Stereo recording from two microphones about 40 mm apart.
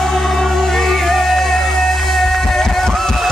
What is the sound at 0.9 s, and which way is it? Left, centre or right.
Music, centre.